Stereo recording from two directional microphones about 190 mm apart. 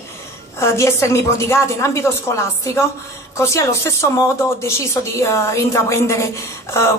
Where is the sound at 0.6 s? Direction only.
15° left (ahead or behind).